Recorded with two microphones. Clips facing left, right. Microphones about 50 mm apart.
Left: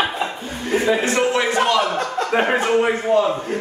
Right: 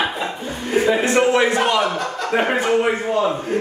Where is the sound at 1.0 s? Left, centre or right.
Centre.